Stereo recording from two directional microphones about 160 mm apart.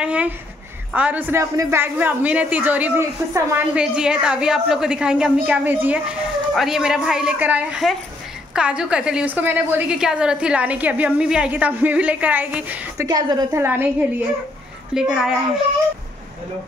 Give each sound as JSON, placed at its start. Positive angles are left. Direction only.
{"t": 0.0, "sound": "a sound", "side_deg": -10}
{"t": 0.9, "sound": "a woman's voice", "side_deg": -10}
{"t": 13.0, "sound": "a woman's voice", "side_deg": -25}
{"t": 15.0, "sound": "a woman's voice", "side_deg": -5}